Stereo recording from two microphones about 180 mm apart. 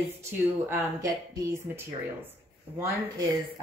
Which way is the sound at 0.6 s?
15° right (ahead or behind).